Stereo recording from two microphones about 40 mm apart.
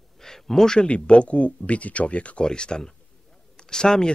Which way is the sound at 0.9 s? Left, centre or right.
Left.